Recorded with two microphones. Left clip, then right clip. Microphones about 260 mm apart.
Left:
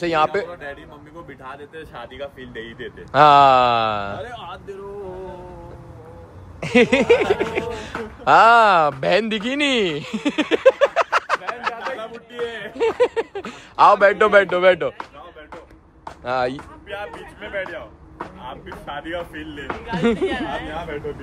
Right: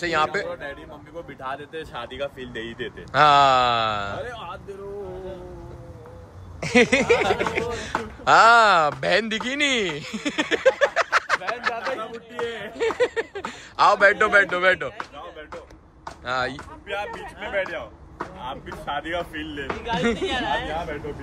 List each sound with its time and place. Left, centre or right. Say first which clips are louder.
0.0 s a man's voice: left 4 dB; centre
0.5 s speech: right 1 dB; centre
1.7 s speech: right 2 dB; right
3.1 s speech: left 4 dB; centre
6.6 s speech: left 2 dB; centre
11.8 s a sound: even; centre
12.4 s a man's voice: left 4 dB; centre
16.3 s a man's voice: left 4 dB; centre
17.6 s a man's voice: right 1 dB; right
20.0 s speech: left 6 dB; centre
20.2 s speech: even; right